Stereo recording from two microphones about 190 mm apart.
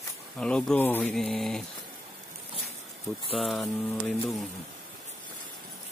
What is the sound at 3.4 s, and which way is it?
Speech, centre (ahead or behind).